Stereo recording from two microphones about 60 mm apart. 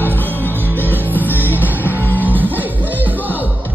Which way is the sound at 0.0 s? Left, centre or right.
Left.